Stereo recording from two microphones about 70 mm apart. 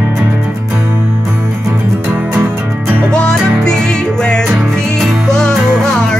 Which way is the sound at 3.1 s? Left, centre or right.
Centre.